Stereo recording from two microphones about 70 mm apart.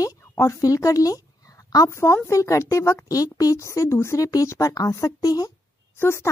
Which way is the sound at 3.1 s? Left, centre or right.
Left.